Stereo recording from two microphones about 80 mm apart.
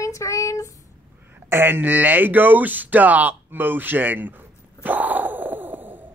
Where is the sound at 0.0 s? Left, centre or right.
Left.